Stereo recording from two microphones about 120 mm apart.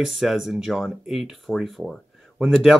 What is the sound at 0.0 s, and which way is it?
A man's voice, centre (ahead or behind).